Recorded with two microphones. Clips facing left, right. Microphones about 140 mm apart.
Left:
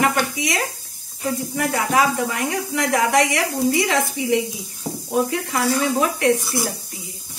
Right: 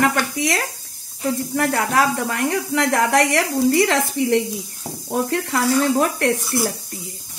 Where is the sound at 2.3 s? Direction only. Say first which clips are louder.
Right 3 dB; 60° right (ahead or behind).